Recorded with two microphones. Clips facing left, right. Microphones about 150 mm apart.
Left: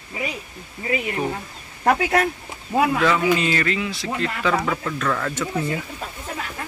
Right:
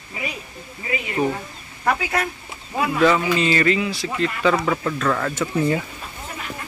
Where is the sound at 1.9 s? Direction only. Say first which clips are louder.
Left 4 dB; 60° left (ahead or behind).